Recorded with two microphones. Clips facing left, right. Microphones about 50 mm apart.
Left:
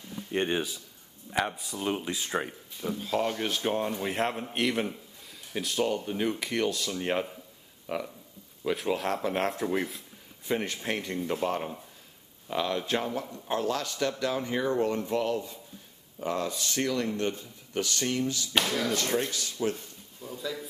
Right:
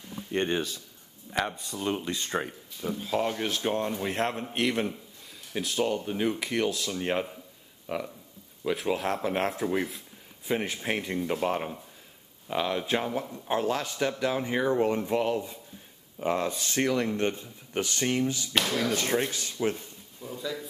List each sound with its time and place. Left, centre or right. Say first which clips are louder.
0.3 s speech: right 1 dB; centre
7.8 s a sound: even; centre
8.6 s speech: right 1 dB; centre
10.4 s speech: right 1 dB; centre
18.5 s speech: left 2 dB; centre
18.9 s speech: right 1 dB; right
20.2 s speech: right 1 dB; centre